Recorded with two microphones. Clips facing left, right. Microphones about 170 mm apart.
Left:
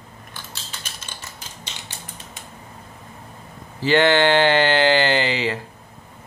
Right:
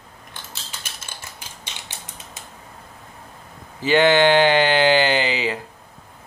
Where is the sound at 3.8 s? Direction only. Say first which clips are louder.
Right 1 dB; 15° right (ahead or behind).